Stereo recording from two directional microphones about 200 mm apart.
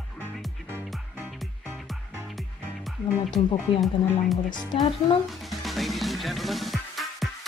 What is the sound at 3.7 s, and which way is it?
Speech, 25° left (ahead or behind).